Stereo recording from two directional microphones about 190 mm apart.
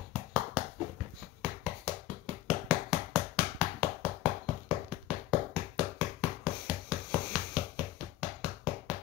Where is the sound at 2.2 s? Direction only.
5° right (ahead or behind).